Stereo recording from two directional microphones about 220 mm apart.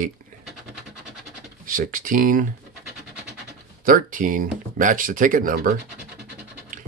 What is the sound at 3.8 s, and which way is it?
Speech, 40° right (ahead or behind).